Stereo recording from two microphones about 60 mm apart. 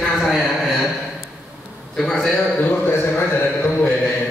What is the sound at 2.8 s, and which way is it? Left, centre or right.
Speech, left.